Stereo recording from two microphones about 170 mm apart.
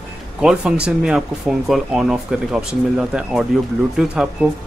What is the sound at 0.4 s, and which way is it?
Speech, 5° right (ahead or behind).